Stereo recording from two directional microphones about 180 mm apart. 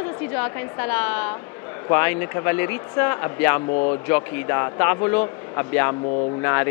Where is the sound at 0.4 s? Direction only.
15° left (ahead or behind).